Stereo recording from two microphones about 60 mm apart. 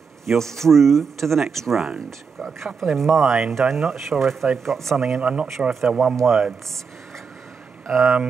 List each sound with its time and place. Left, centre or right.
0.3 s speech: centre
5.2 s speech: centre
5.7 s speech: centre
7.8 s speech: centre